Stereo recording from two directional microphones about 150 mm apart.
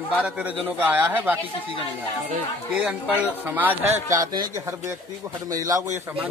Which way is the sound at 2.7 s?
10° right (ahead or behind).